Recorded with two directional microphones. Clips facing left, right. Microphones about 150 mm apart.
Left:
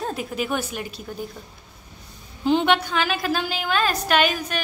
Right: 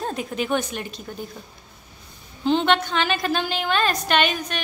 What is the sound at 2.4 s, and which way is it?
A woman's voice, 10° left (ahead or behind).